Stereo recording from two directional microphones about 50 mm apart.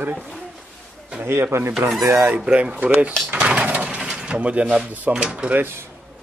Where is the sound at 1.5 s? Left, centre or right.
Right.